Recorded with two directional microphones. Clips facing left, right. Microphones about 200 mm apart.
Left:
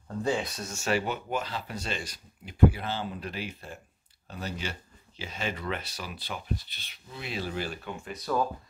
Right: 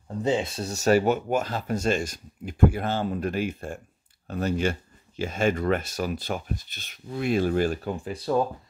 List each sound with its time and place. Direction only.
0.2 s speech: 25° right (ahead or behind)